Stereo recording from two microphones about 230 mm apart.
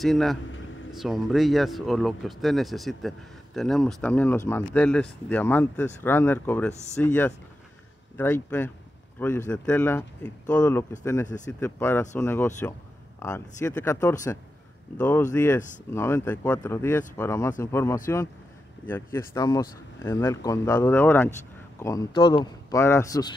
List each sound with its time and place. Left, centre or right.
0.0 s speech: centre
6.7 s speech: left
7.0 s speech: centre